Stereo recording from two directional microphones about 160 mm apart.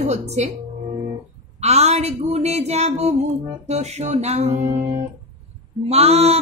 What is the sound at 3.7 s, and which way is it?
Music, 45° right (ahead or behind).